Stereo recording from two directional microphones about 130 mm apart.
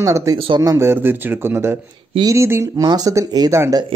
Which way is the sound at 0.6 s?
20° right (ahead or behind).